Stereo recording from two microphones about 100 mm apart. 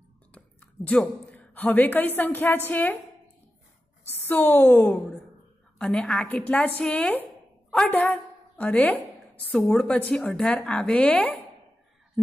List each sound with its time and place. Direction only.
0.3 s a woman's voice: 15° left (ahead or behind)
4.1 s a woman's voice: 20° left (ahead or behind)